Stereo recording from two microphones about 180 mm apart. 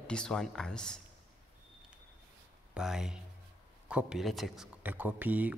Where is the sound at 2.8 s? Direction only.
5° right (ahead or behind).